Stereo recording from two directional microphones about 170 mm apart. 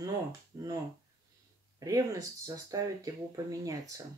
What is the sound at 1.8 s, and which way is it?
Speech, 20° right (ahead or behind).